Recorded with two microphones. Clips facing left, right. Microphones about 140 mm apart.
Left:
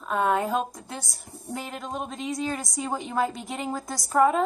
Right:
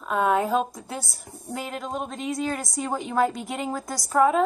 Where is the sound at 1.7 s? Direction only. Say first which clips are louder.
Right 2 dB; centre (ahead or behind).